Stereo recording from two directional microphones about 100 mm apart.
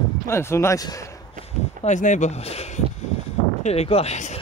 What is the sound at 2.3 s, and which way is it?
Speech, 90° left.